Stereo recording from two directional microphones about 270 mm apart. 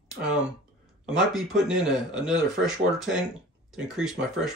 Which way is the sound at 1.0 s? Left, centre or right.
Centre.